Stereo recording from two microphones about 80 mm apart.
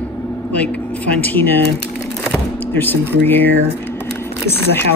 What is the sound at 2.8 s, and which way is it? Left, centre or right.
Speech, left.